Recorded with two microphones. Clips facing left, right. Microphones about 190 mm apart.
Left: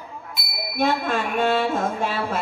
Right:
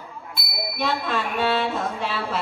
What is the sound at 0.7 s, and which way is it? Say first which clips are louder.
A woman's voice: left 4 dB; 50° left (ahead or behind).